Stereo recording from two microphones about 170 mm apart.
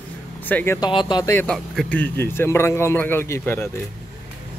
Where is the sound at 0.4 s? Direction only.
10° left (ahead or behind).